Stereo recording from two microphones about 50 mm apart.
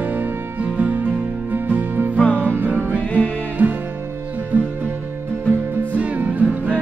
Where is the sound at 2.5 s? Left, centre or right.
Right.